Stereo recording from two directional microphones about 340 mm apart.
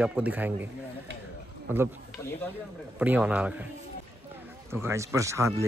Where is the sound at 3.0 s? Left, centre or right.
Centre.